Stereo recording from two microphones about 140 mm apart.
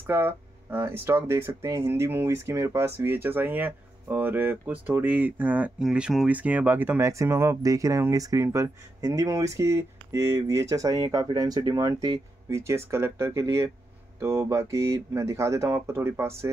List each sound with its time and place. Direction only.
0.0 s speech: 15° right (ahead or behind)